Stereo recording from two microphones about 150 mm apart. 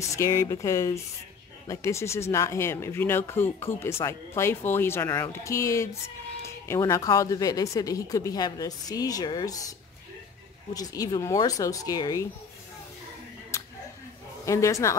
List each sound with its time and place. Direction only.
0.1 s a woman's voice: 20° left (ahead or behind)
14.4 s a woman's voice: 20° left (ahead or behind)